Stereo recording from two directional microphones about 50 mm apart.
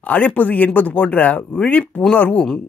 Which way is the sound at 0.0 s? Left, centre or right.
Left.